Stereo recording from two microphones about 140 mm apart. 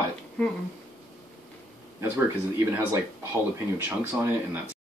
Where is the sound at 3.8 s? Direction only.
15° right (ahead or behind).